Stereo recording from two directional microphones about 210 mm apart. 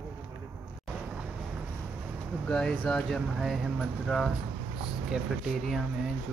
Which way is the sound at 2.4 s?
5° left (ahead or behind).